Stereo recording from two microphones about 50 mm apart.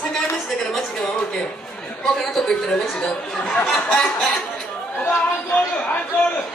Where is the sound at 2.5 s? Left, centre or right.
Centre.